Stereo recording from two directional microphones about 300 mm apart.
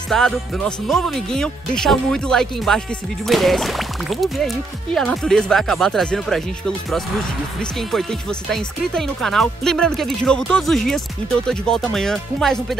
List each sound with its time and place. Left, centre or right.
0.1 s speech: centre
7.9 s speech: centre